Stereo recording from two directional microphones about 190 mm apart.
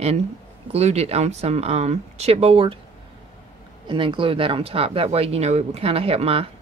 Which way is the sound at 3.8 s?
25° right (ahead or behind).